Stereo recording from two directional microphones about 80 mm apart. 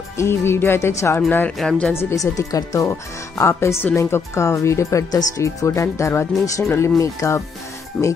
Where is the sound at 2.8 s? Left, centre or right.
Left.